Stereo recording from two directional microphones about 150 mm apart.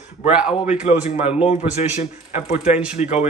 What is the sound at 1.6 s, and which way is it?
A man's voice, 50° left (ahead or behind).